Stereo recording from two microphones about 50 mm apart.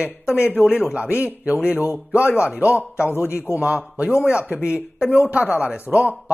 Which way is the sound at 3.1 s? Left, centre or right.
Left.